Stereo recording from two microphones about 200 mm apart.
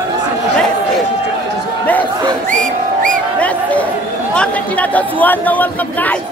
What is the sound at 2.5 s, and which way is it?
Music, 40° right (ahead or behind).